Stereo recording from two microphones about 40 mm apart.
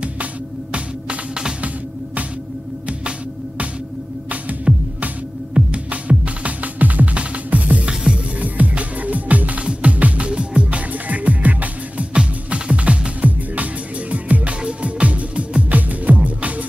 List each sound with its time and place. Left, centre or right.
0.7 s music: right
4.7 s music: right
7.9 s music: centre
8.4 s music: right
10.9 s music: right